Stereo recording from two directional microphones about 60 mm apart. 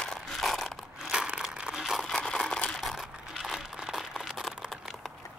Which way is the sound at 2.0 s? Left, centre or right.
Centre.